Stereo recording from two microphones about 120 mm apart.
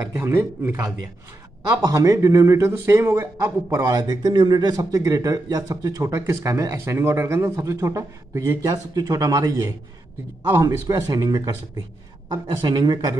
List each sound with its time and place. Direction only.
0.1 s a man's voice: 20° right (ahead or behind)